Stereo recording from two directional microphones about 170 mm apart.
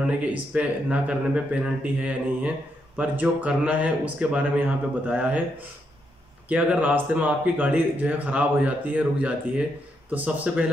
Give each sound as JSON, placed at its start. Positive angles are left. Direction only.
{"t": 0.5, "sound": "speech", "side_deg": -5}
{"t": 6.5, "sound": "speech", "side_deg": -5}